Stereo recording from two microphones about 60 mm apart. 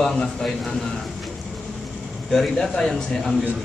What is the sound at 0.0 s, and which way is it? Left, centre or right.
Speech, centre.